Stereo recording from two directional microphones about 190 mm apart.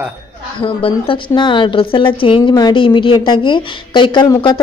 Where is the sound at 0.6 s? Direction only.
25° left (ahead or behind).